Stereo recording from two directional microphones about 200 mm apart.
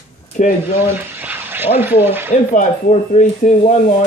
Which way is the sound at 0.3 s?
40° left (ahead or behind).